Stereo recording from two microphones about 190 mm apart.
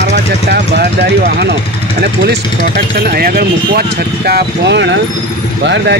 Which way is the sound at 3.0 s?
55° right (ahead or behind).